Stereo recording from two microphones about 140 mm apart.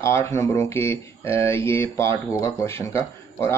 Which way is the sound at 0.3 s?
20° left (ahead or behind).